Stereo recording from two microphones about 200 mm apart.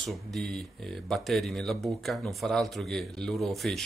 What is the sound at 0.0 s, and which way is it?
Speech, centre (ahead or behind).